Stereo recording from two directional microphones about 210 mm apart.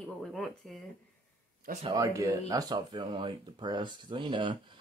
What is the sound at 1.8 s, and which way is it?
Speech, 15° right (ahead or behind).